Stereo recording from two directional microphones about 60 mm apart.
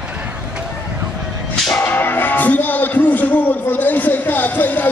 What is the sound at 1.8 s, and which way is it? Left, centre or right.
Music, left.